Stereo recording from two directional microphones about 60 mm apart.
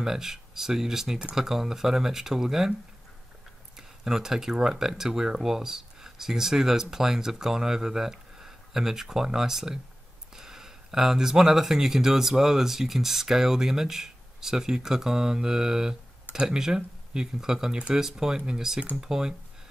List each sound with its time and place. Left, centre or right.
0.0 s speech: centre
3.7 s speech: centre